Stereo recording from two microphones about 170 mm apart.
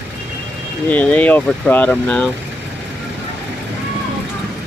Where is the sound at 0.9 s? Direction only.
10° left (ahead or behind).